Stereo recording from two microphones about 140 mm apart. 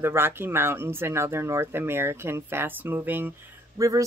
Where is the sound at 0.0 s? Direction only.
15° right (ahead or behind).